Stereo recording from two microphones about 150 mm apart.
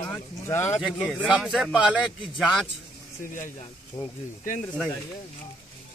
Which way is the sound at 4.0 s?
25° left (ahead or behind).